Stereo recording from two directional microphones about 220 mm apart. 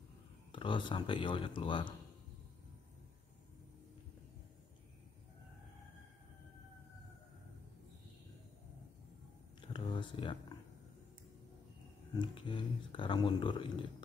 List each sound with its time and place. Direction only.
0.5 s speech: 20° left (ahead or behind)
9.6 s a sound: 20° left (ahead or behind)
12.2 s speech: 20° left (ahead or behind)